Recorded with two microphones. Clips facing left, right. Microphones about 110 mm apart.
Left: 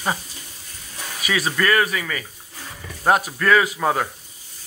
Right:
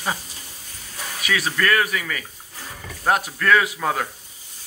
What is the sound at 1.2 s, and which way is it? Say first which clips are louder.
Speech: left 1 dB; 5° left (ahead or behind).